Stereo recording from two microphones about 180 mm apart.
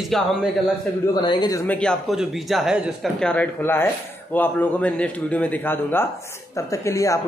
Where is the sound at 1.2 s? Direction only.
25° left (ahead or behind).